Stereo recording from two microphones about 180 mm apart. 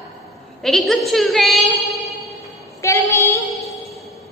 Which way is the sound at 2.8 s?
15° left (ahead or behind).